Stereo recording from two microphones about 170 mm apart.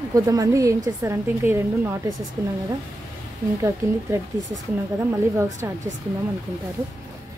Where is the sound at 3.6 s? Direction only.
15° right (ahead or behind).